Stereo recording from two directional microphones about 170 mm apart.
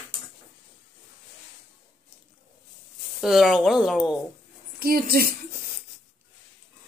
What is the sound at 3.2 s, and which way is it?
Speech, centre (ahead or behind).